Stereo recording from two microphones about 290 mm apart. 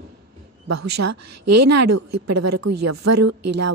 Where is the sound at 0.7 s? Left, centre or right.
Right.